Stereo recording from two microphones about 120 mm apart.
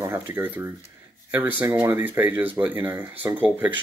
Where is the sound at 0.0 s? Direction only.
20° right (ahead or behind).